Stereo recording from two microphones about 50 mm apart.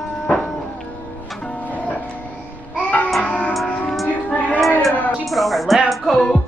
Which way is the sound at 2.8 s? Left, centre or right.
Left.